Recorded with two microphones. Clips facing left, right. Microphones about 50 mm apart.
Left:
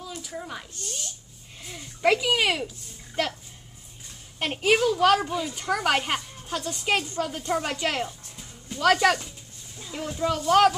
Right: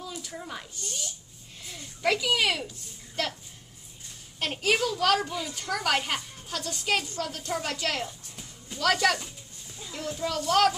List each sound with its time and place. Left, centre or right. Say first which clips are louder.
0.0 s a sound: left 2 dB; centre
1.6 s a child's voice: left 5 dB; centre
4.4 s a child's voice: left 4 dB; centre